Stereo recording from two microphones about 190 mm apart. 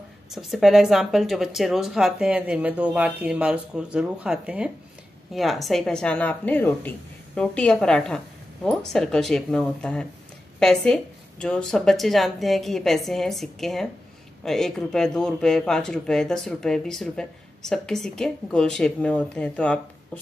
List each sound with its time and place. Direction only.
0.3 s a man's voice: centre (ahead or behind)